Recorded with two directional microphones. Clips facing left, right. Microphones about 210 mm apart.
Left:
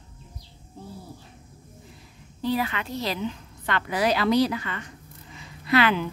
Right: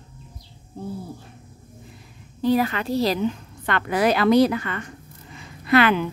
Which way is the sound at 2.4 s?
45° right (ahead or behind).